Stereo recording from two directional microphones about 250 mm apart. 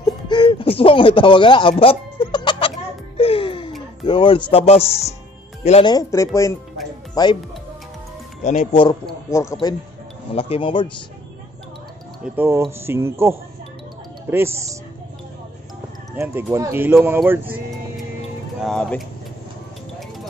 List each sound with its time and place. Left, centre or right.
0.0 s a sound: centre
3.2 s music: left
4.0 s speech: left
8.5 s speech: left
9.3 s speech: centre
12.4 s speech: centre
16.2 s speech: centre